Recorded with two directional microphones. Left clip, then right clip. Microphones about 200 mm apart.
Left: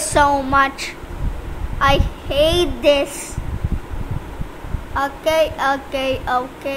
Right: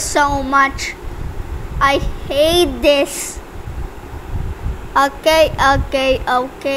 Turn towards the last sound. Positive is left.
turn(degrees=-20)  # may be behind; listen again after turning